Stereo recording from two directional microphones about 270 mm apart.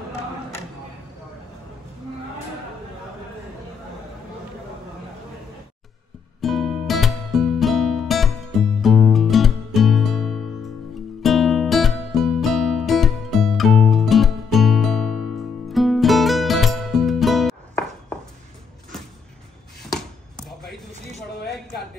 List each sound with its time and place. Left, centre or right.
6.4 s music: centre
19.8 s chop: centre